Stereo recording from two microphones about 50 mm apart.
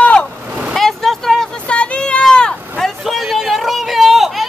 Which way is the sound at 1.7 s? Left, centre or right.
Left.